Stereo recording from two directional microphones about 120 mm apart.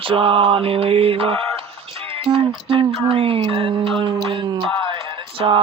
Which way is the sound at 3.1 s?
50° right (ahead or behind).